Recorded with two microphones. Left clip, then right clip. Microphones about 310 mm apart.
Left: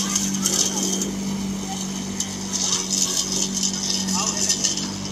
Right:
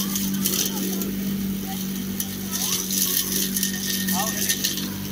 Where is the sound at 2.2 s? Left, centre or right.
Centre.